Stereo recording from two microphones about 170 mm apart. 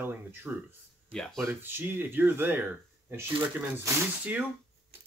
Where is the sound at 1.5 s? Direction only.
10° right (ahead or behind).